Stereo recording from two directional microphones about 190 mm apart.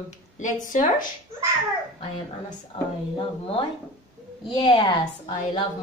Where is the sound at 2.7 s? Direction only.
30° left (ahead or behind).